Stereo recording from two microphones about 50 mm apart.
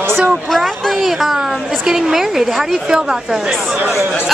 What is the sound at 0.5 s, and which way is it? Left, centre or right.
A woman's voice, centre.